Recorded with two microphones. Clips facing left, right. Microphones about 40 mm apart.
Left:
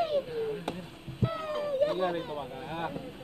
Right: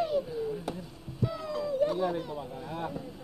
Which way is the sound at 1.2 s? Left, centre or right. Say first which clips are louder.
Left 1 dB; left.